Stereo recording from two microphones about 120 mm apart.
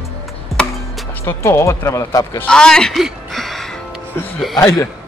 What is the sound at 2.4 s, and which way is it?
Music, 5° left (ahead or behind).